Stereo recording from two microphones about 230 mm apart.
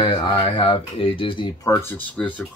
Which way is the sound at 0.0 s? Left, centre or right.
Centre.